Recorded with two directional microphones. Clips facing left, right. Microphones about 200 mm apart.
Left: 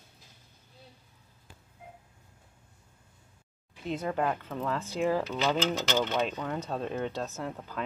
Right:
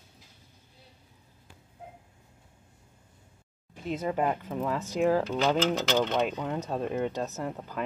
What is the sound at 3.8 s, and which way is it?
Speech, 10° right (ahead or behind).